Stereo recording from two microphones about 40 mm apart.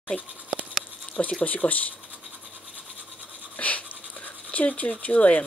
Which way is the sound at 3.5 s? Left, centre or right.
Left.